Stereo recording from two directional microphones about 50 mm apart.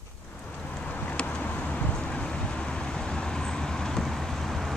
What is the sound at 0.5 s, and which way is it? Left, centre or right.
Vehicle, centre.